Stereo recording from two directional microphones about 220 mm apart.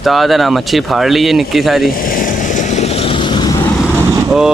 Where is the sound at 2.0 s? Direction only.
40° left (ahead or behind); by 3.6 s 20° left (ahead or behind).